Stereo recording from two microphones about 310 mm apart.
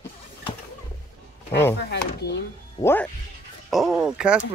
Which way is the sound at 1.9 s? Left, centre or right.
Left.